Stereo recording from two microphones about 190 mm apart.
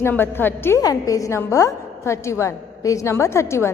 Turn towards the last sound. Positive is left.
turn(degrees=15)  # may be behind; listen again after turning